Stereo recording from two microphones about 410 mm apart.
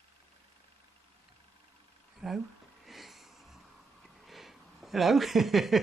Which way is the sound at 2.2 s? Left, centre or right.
Centre.